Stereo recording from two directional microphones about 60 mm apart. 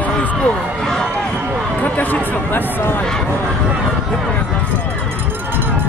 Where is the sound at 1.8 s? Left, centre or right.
Left.